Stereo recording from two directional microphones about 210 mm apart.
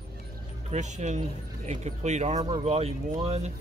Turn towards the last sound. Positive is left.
turn(degrees=-30)  # may be behind; listen again after turning